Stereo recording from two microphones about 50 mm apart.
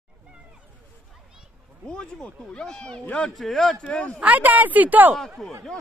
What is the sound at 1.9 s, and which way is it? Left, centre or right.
Speech, centre.